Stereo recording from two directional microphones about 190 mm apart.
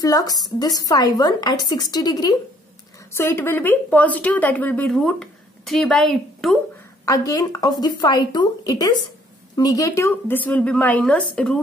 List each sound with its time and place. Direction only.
0.0 s speech: 20° left (ahead or behind); by 6.6 s 5° left (ahead or behind)
7.1 s speech: 20° left (ahead or behind); by 11.6 s 5° left (ahead or behind)